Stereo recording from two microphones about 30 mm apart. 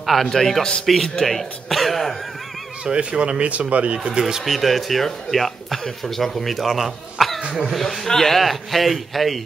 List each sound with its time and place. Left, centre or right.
0.0 s a man's voice: centre
0.4 s a man's voice: centre
0.9 s speech: centre
2.8 s speech: right
4.5 s speech: centre